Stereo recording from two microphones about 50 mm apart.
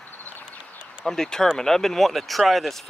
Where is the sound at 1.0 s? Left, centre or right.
Centre.